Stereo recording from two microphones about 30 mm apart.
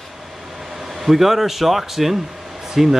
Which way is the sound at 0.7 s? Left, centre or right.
Centre.